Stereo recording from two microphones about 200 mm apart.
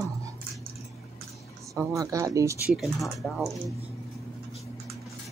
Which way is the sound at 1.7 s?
15° right (ahead or behind).